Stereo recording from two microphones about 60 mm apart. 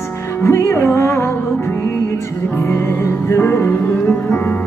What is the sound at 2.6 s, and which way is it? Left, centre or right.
Music, left.